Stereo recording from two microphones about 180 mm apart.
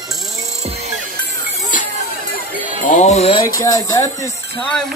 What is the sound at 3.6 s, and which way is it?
Speech, 20° left (ahead or behind).